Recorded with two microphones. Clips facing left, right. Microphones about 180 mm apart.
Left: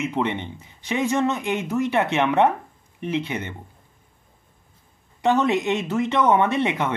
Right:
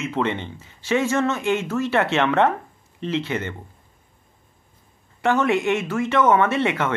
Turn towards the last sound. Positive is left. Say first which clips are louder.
# right 1 dB
turn(degrees=15)  # may be behind; listen again after turning